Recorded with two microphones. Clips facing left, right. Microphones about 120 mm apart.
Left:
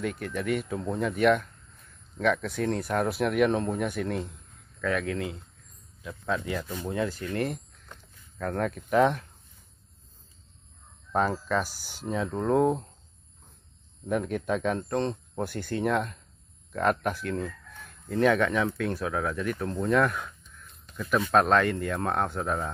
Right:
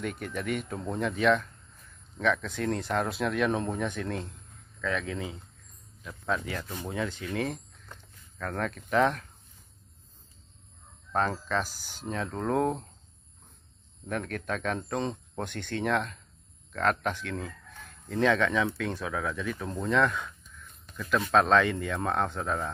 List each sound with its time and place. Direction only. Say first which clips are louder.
0.0 s speech: left 3 dB; centre (ahead or behind)
11.1 s speech: left 2 dB; 5° left (ahead or behind)
14.0 s speech: left 5 dB; 10° left (ahead or behind)
21.3 s speech: even; 5° left (ahead or behind)